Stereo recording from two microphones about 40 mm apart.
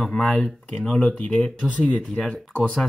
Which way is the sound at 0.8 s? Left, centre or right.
Centre.